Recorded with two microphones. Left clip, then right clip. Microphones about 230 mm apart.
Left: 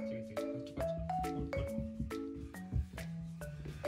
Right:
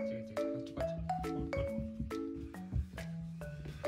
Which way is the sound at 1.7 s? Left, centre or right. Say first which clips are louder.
Right 1 dB; centre.